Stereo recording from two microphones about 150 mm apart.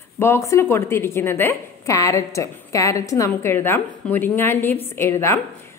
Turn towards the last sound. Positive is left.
turn(degrees=15)  # may be behind; listen again after turning